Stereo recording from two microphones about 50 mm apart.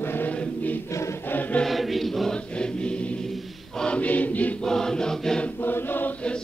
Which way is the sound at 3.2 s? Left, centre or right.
Centre.